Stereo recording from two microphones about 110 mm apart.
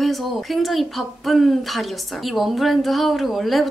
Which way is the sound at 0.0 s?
Centre (ahead or behind).